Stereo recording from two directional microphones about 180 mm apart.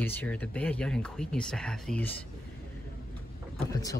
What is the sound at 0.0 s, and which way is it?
Speech, 10° left (ahead or behind).